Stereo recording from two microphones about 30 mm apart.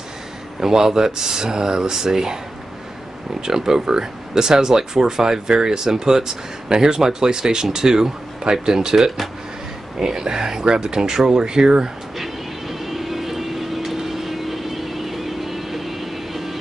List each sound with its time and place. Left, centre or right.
0.6 s speech: centre
3.3 s speech: right
12.2 s vehicle: centre